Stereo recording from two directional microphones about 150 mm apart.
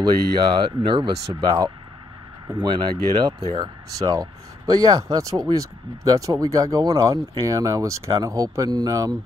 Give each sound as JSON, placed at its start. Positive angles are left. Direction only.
{"t": 0.0, "sound": "speech", "side_deg": -30}